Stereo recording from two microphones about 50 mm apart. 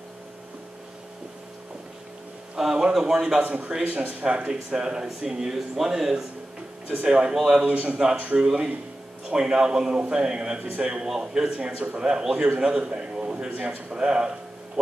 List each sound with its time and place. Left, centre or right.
2.5 s speech: centre
3.4 s speech: right; by 7.6 s centre
7.6 s speech: right
8.4 s a man's voice: centre